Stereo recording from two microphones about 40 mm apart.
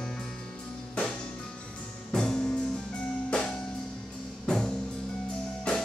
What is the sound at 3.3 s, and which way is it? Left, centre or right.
Music, left.